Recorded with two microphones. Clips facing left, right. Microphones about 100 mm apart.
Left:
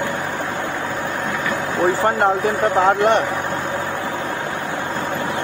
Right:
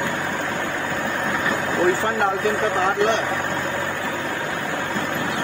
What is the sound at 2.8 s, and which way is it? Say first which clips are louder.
Speech: left 5 dB; 45° left (ahead or behind).